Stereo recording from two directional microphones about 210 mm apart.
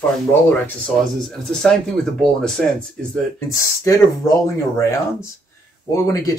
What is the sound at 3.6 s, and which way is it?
Speech, 15° left (ahead or behind).